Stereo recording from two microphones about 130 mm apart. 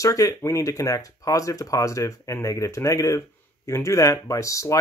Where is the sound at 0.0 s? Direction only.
25° left (ahead or behind).